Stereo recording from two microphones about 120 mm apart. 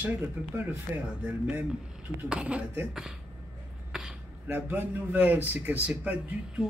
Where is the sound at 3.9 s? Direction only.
5° right (ahead or behind).